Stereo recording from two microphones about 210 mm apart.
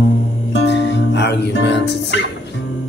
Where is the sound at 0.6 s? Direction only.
55° left (ahead or behind).